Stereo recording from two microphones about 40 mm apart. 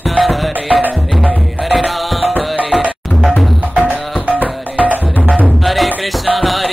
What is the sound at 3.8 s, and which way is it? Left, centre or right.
Music, right.